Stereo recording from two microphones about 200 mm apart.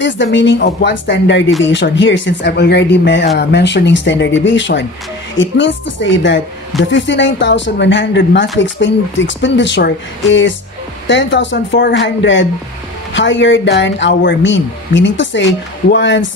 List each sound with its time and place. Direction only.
0.0 s speech: 65° left (ahead or behind)